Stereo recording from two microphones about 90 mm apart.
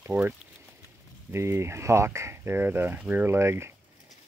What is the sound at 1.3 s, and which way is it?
Speech, 30° right (ahead or behind).